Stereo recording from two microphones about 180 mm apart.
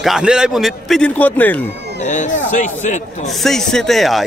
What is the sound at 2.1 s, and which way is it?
Speech, 45° left (ahead or behind).